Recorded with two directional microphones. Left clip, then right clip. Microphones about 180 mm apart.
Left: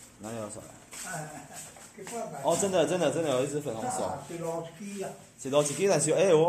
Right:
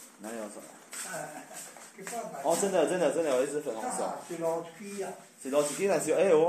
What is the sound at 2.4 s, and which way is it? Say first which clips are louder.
Speech: left 1 dB; 20° left (ahead or behind).